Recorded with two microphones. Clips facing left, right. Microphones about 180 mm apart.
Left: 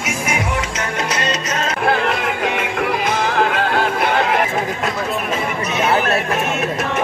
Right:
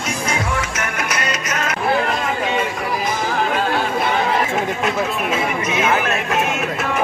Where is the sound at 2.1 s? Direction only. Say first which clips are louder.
Even; 75° left (ahead or behind).